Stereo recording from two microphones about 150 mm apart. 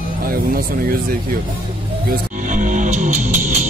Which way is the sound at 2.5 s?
55° right (ahead or behind).